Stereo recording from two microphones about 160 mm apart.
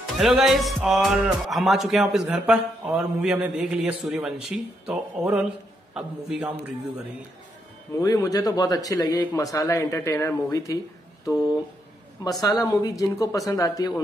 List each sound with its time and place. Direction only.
0.2 s a man's voice: centre (ahead or behind)
8.0 s speech: 20° left (ahead or behind)
12.2 s speech: 20° left (ahead or behind)